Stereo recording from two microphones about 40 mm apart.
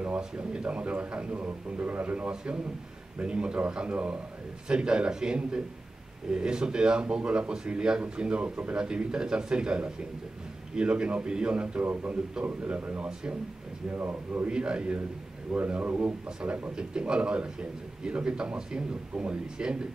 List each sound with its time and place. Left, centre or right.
0.2 s a man's voice: right
1.3 s a man's voice: right
13.9 s a man's voice: right
14.5 s a man's voice: right
15.8 s a man's voice: right
16.7 s a man's voice: right